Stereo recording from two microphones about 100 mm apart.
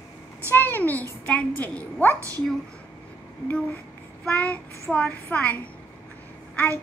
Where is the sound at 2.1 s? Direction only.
30° right (ahead or behind).